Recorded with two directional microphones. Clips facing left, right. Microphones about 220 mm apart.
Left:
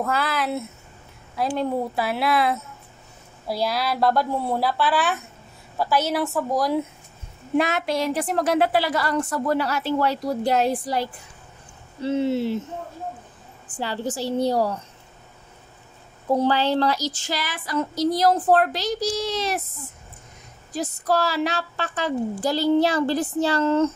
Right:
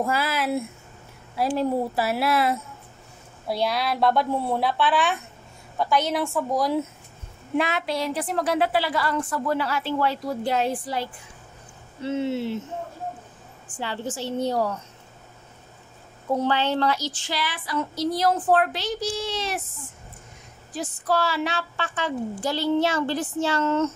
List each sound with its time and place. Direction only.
0.0 s a woman's voice: 5° right (ahead or behind)
7.5 s a woman's voice: 45° left (ahead or behind)
13.7 s a woman's voice: 35° left (ahead or behind)
16.3 s a woman's voice: 35° left (ahead or behind)
20.7 s a woman's voice: 40° left (ahead or behind)